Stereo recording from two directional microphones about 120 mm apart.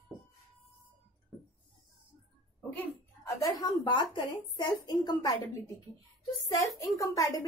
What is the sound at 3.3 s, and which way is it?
A woman's voice, 30° left (ahead or behind).